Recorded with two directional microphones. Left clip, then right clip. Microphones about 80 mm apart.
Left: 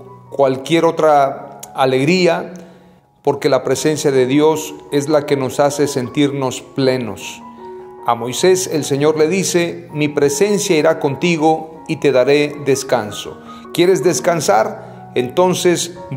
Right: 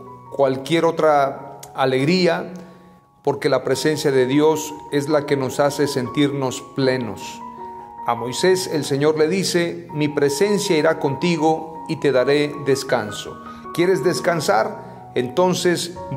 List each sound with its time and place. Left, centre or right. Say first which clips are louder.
0.4 s a man's voice: left 4 dB; left
13.7 s speech: left 5 dB; left